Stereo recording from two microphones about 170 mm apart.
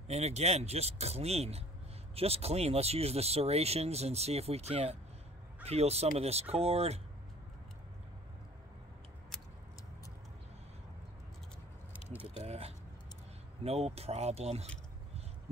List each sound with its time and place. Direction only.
0.1 s speech: 40° right (ahead or behind)
11.9 s biting: 10° right (ahead or behind)
12.4 s vehicle: 35° right (ahead or behind)
13.7 s speech: 35° right (ahead or behind)